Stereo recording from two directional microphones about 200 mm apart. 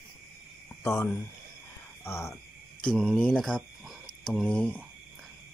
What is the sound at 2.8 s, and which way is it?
Cricket, centre (ahead or behind).